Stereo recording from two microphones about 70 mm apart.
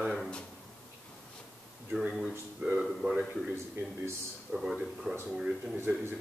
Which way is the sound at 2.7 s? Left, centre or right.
Centre.